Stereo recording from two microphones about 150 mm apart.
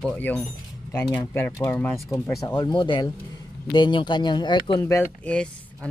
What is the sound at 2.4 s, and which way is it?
Speech, 30° left (ahead or behind).